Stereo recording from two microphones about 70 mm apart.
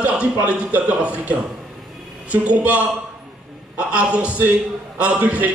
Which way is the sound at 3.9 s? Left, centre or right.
Centre.